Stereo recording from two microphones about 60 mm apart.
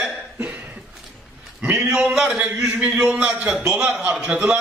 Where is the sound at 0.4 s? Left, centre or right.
Right.